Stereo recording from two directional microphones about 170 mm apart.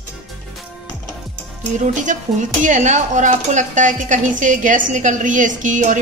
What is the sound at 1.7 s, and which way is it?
Speech, 45° right (ahead or behind).